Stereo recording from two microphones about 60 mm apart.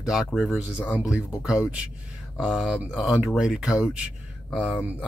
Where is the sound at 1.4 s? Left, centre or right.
Centre.